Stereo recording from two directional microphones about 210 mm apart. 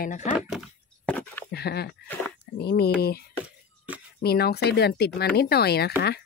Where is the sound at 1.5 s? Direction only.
50° left (ahead or behind).